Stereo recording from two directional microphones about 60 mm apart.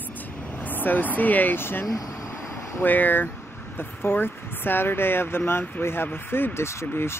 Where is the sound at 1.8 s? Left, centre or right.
Left.